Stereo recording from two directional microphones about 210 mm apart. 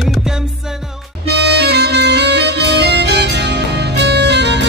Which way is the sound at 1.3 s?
55° right (ahead or behind).